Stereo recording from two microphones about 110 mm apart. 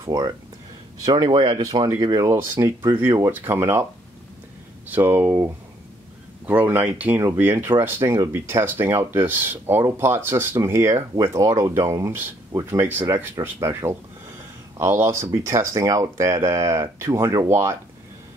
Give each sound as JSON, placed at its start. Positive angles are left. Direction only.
{"t": 0.0, "sound": "speech", "side_deg": -35}
{"t": 1.3, "sound": "speech", "side_deg": -55}
{"t": 2.0, "sound": "speech", "side_deg": -30}
{"t": 4.8, "sound": "speech", "side_deg": -15}